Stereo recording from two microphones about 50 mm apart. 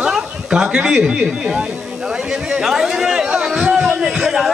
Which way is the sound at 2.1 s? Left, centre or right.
Centre.